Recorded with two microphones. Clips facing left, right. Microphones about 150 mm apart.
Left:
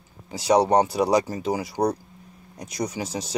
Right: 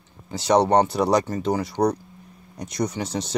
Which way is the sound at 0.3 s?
5° left (ahead or behind).